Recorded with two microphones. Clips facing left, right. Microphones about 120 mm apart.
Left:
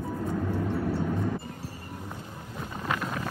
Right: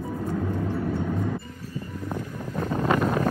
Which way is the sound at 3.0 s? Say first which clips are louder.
Right 9 dB; 45° right (ahead or behind).